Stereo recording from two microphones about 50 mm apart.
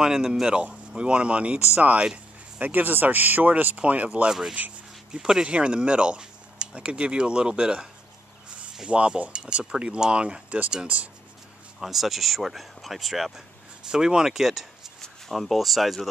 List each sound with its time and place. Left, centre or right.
0.0 s speech: centre
4.3 s speech: centre
11.8 s speech: centre
13.8 s speech: centre